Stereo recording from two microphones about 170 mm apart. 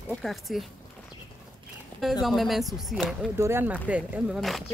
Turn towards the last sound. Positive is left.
turn(degrees=0)  # may be behind; listen again after turning